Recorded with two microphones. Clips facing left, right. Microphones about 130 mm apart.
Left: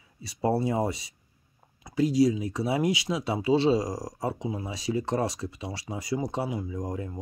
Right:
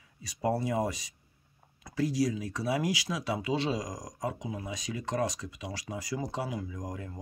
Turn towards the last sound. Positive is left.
turn(degrees=25)  # may be behind; listen again after turning